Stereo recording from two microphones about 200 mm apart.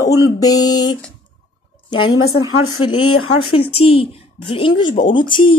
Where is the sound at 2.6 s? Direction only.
90° left.